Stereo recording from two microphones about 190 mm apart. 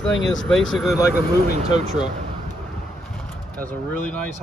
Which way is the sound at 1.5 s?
35° right (ahead or behind).